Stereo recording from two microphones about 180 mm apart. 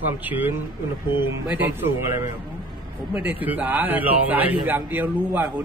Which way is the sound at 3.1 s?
10° right (ahead or behind).